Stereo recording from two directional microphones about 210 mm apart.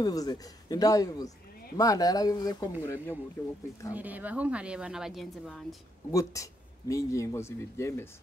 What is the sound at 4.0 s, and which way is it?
A woman's voice, 10° right (ahead or behind).